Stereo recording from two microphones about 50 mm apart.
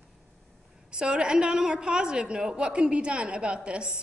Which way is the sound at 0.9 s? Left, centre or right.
Centre.